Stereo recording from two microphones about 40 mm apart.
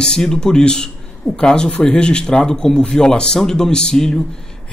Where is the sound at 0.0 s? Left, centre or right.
Centre.